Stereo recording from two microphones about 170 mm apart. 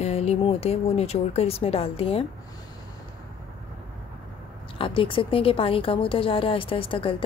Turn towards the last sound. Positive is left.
turn(degrees=30)  # may be behind; listen again after turning